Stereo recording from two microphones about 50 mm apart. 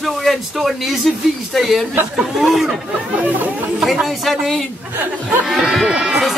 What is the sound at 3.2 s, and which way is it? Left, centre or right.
Speech, right.